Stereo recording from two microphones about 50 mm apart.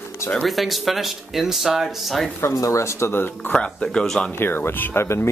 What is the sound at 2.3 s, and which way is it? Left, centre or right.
Speech, left.